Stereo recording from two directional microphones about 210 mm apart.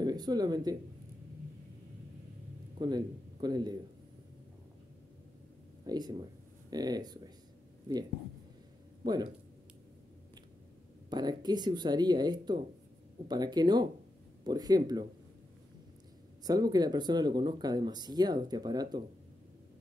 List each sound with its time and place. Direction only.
0.0 s speech: 20° right (ahead or behind)
2.8 s a man's voice: 20° right (ahead or behind)
5.9 s speech: 20° right (ahead or behind)
9.0 s speech: 20° right (ahead or behind)
11.1 s speech: 20° right (ahead or behind)
16.4 s speech: 20° right (ahead or behind)